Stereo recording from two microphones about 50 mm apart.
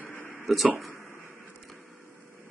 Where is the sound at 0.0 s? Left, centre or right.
Left.